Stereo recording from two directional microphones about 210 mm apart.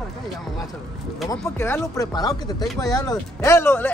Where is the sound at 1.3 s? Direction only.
10° left (ahead or behind).